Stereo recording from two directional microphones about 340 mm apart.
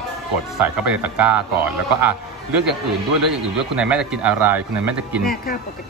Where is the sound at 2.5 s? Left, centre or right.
Right.